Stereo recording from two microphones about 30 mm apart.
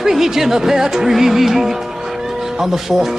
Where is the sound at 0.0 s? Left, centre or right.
Centre.